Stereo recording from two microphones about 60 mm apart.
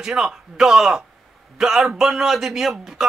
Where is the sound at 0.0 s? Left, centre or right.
Centre.